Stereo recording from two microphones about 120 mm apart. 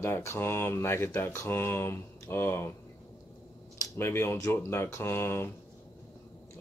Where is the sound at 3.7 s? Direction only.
20° left (ahead or behind).